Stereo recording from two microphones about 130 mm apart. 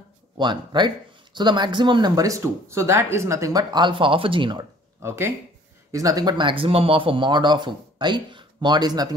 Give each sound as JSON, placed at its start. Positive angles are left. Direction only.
{"t": 0.4, "sound": "speech", "side_deg": -35}
{"t": 5.0, "sound": "speech", "side_deg": -20}